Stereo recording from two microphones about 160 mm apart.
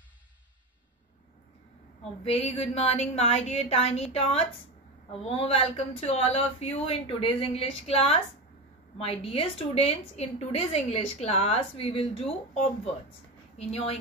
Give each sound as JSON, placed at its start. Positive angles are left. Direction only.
{"t": 2.2, "sound": "a woman's voice", "side_deg": 40}
{"t": 13.6, "sound": "a woman's voice", "side_deg": 40}